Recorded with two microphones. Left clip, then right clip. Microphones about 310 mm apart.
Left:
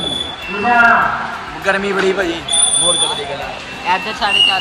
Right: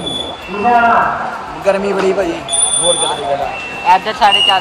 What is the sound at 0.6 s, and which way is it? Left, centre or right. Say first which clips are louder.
Speech: right 1 dB; centre.